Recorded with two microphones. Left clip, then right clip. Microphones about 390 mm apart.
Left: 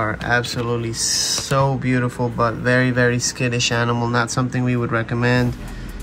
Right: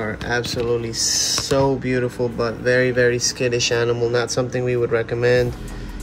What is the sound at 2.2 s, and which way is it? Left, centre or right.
Speech, left.